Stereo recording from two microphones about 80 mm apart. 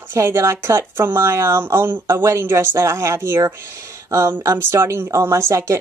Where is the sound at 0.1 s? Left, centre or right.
Right.